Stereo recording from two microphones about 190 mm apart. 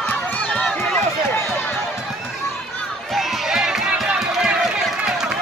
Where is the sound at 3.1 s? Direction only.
Centre (ahead or behind).